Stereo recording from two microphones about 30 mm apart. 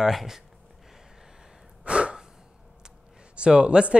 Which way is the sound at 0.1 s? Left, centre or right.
Centre.